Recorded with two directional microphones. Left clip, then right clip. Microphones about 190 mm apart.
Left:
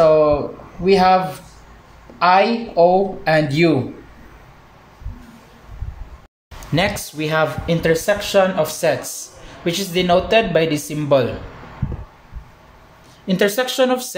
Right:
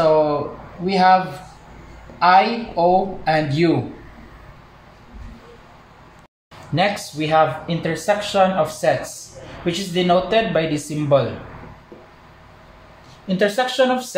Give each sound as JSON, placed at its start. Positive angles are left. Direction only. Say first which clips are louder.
{"t": 0.0, "sound": "a sound", "louder": "left 3 dB", "side_deg": 40}
{"t": 0.8, "sound": "speech", "louder": "left 1 dB", "side_deg": 40}
{"t": 6.7, "sound": "speech", "louder": "even", "side_deg": 55}
{"t": 13.4, "sound": "speech", "louder": "even", "side_deg": 55}